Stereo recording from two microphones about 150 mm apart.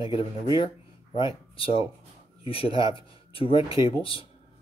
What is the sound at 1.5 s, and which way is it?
Speech, 35° left (ahead or behind).